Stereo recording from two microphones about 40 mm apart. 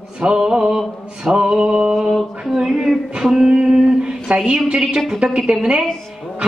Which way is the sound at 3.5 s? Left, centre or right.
Centre.